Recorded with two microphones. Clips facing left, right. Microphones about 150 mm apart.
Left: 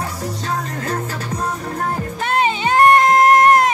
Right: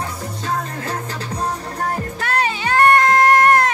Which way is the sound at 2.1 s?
20° left (ahead or behind).